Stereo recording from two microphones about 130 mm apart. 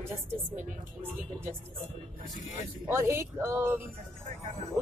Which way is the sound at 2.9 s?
20° right (ahead or behind).